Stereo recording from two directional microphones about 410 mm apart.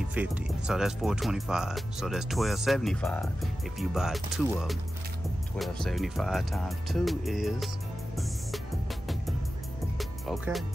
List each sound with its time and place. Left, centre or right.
0.1 s speech: centre
9.9 s music: centre